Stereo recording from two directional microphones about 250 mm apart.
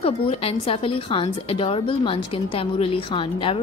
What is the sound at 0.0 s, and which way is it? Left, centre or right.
A woman's voice, left.